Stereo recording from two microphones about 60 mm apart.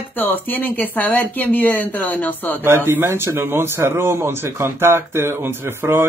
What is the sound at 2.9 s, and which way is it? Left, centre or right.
Speech, right.